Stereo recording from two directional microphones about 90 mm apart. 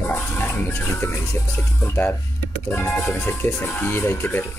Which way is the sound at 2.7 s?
20° left (ahead or behind).